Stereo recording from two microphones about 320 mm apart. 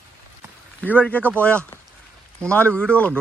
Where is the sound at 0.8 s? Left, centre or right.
Centre.